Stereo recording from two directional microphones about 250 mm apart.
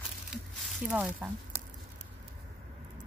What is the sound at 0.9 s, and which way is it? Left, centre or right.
Speech, centre.